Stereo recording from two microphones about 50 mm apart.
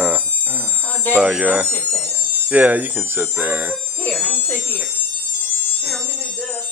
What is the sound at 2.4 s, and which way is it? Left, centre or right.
Speech, right.